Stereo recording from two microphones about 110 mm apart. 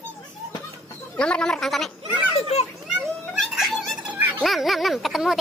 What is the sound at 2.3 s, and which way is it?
Speech, 70° left (ahead or behind).